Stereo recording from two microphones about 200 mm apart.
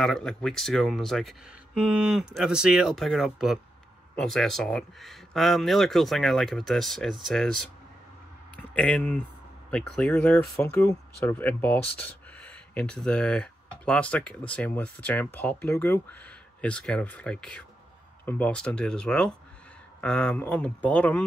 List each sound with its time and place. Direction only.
0.0 s speech: 5° left (ahead or behind)
8.7 s speech: 5° left (ahead or behind)